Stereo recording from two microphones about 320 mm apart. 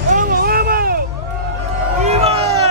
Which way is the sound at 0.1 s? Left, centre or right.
Right.